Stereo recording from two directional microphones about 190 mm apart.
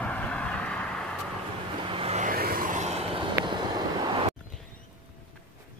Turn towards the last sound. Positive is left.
turn(degrees=-25)  # may be behind; listen again after turning